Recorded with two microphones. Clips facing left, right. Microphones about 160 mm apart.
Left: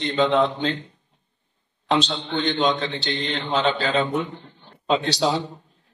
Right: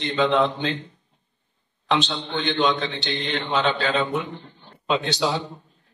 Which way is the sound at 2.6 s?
35° left (ahead or behind).